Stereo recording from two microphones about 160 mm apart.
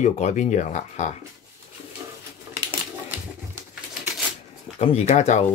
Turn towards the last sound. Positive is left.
turn(degrees=45)  # may be behind; listen again after turning